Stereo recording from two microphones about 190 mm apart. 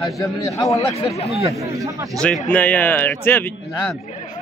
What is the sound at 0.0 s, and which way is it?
Speech, centre (ahead or behind).